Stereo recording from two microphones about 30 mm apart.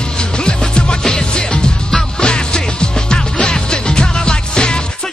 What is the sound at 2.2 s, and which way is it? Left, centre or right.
Music, left.